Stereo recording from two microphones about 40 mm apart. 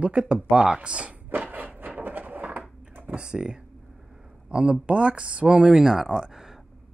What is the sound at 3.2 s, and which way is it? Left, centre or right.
Speech, right.